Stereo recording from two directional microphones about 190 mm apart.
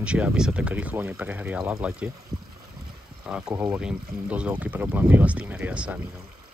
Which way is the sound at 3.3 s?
5° right (ahead or behind).